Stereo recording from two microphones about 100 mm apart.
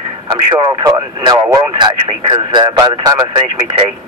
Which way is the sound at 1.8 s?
55° right (ahead or behind).